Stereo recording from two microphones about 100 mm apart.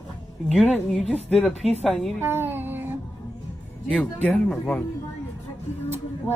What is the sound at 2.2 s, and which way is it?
Music, 25° right (ahead or behind).